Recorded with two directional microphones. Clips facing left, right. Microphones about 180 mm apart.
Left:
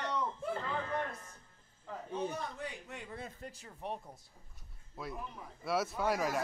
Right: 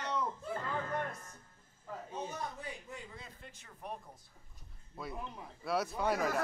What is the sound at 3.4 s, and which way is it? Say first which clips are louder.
Speech: left 5 dB; 35° left (ahead or behind).